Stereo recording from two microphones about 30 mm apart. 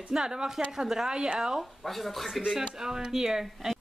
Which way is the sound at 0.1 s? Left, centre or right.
Right.